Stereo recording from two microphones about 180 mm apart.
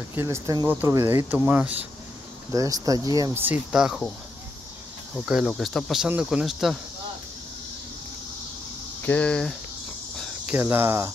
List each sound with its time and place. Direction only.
0.1 s speech: 15° right (ahead or behind)
2.5 s speech: 20° right (ahead or behind); by 4.1 s 5° right (ahead or behind)
5.1 s speech: 5° right (ahead or behind)
9.0 s speech: 5° left (ahead or behind)
10.1 s cricket: centre (ahead or behind)
10.5 s speech: 10° right (ahead or behind)